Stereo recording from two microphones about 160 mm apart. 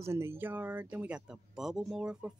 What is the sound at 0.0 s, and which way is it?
Speech, 15° right (ahead or behind).